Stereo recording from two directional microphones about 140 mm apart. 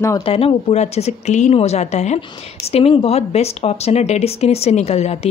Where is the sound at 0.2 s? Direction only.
40° left (ahead or behind).